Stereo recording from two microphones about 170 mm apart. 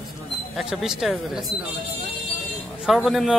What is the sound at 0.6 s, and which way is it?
Speech, centre (ahead or behind).